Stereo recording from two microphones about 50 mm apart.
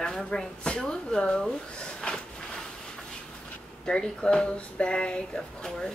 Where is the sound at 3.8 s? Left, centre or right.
Centre.